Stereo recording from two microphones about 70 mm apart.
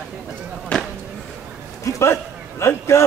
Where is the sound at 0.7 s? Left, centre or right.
Centre.